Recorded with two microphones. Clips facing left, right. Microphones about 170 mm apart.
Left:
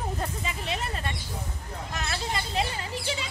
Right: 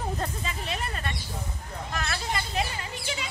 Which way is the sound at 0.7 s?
25° left (ahead or behind).